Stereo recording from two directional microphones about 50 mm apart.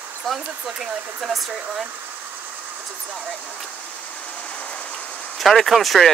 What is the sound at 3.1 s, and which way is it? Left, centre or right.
Speech, centre.